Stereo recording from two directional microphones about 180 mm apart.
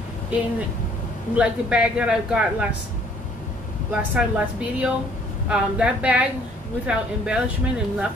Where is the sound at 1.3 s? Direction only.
5° right (ahead or behind).